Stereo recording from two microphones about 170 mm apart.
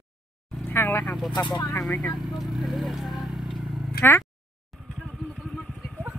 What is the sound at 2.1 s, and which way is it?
Speech, centre (ahead or behind).